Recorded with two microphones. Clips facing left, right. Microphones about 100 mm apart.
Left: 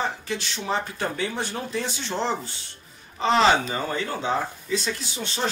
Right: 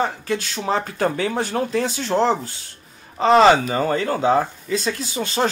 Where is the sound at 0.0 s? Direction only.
50° right (ahead or behind).